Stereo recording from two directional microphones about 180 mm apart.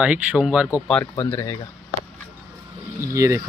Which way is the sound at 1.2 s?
20° left (ahead or behind).